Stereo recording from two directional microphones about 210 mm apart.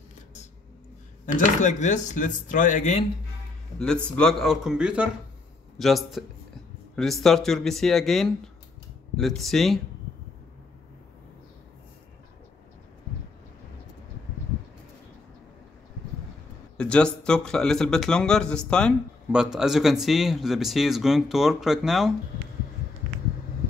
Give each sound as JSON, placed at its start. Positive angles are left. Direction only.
{"t": 1.2, "sound": "speech", "side_deg": 35}
{"t": 4.2, "sound": "speech", "side_deg": 0}
{"t": 16.7, "sound": "speech", "side_deg": 5}